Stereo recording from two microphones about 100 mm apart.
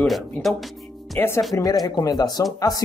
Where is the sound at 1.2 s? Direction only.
25° left (ahead or behind).